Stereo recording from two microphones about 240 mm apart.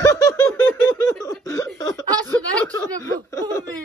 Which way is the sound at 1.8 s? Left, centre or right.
Centre.